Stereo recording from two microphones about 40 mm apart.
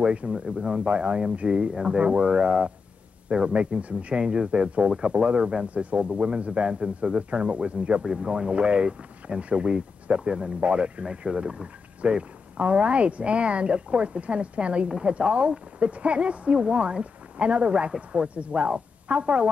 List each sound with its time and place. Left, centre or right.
0.2 s speech: right
0.6 s speech: centre
0.8 s speech: right
11.6 s speech: right
15.1 s speech: right